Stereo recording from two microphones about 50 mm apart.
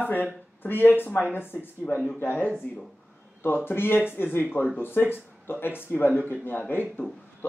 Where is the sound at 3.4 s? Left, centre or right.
Left.